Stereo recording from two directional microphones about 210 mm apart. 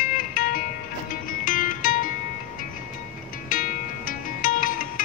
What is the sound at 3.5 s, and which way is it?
Music, 40° left (ahead or behind).